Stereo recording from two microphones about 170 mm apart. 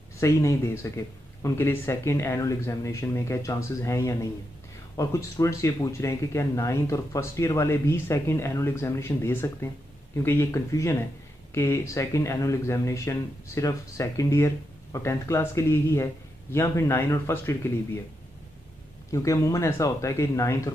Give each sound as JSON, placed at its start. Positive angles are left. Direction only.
{"t": 0.2, "sound": "speech", "side_deg": 15}
{"t": 19.0, "sound": "speech", "side_deg": 20}